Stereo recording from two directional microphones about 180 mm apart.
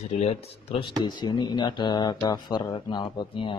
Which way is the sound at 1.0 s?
25° left (ahead or behind).